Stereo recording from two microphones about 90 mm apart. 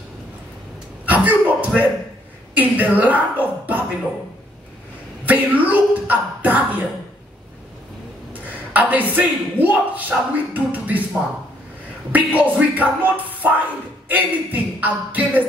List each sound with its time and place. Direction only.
1.0 s a man's voice: 15° right (ahead or behind)
5.2 s speech: 15° right (ahead or behind)
8.3 s a sound: 20° right (ahead or behind)
9.1 s speech: 15° right (ahead or behind)
12.1 s speech: 20° right (ahead or behind)